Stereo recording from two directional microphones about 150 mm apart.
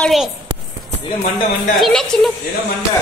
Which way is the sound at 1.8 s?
5° left (ahead or behind).